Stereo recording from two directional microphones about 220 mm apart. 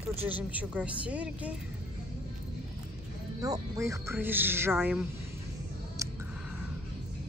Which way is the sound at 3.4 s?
15° right (ahead or behind).